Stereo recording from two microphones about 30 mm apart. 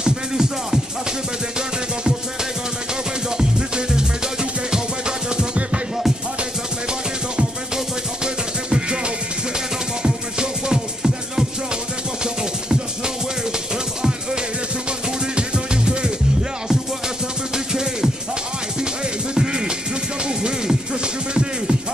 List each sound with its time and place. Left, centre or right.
0.0 s music: centre
3.3 s music: right
8.6 s music: right
10.0 s music: right
15.3 s music: right
19.3 s music: right